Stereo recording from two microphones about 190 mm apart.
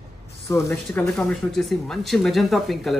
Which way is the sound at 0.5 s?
15° left (ahead or behind).